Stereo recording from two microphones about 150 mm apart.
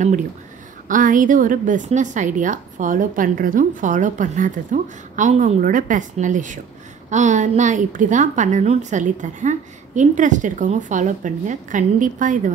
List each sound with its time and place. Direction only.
0.8 s a woman's voice: 60° right (ahead or behind)